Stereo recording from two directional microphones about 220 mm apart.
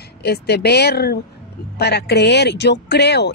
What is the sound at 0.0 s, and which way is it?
Speech, 45° left (ahead or behind).